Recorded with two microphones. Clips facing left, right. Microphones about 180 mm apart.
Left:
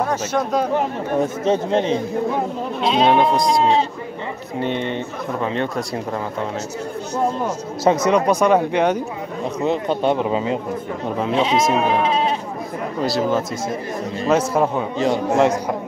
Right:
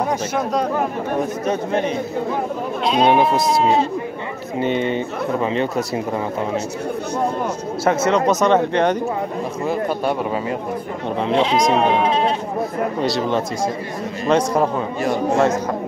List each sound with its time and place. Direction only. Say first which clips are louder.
1.4 s speech: left 2 dB; 25° left (ahead or behind)
2.8 s speech: even; centre (ahead or behind)
7.8 s speech: left 1 dB; 15° left (ahead or behind)
9.7 s speech: left 2 dB; 25° left (ahead or behind)
11.1 s speech: right 1 dB; 5° left (ahead or behind)
13.0 s speech: left 3 dB; centre (ahead or behind)
15.0 s speech: left 1 dB; 15° left (ahead or behind)